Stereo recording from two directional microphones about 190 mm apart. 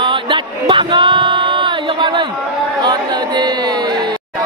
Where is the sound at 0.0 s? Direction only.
25° right (ahead or behind).